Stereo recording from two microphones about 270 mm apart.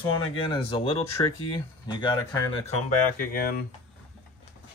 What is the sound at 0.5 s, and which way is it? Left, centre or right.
Speech, centre.